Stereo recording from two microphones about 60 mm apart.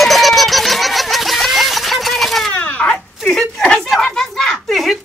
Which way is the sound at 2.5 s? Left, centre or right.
Left.